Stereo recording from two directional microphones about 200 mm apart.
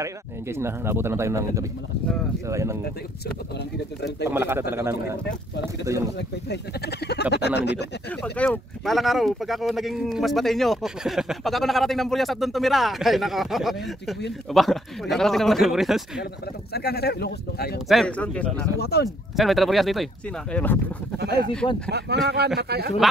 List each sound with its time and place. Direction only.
0.0 s speech: 15° right (ahead or behind)
4.3 s speech: 10° right (ahead or behind)
6.1 s speech: 55° left (ahead or behind)
8.2 s speech: 5° left (ahead or behind)
16.7 s speech: 55° left (ahead or behind)
17.8 s speech: centre (ahead or behind)
18.8 s speech: 55° left (ahead or behind)
19.0 s speech: centre (ahead or behind)
21.2 s speech: 55° right (ahead or behind)